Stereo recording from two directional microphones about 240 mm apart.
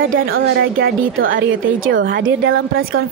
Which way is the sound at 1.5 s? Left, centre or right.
Right.